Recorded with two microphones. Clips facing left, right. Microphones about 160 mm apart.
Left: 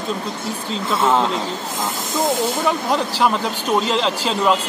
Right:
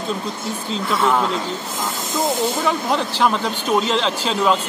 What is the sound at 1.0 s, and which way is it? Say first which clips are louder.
Speech: left 2 dB; 20° left (ahead or behind).